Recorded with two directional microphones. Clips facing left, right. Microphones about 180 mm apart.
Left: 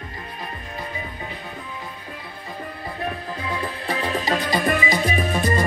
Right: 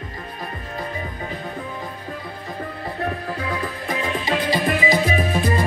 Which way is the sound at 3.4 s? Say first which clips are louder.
Left 1 dB; 30° left (ahead or behind).